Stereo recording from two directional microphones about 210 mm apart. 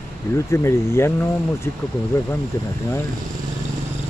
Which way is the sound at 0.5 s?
10° left (ahead or behind).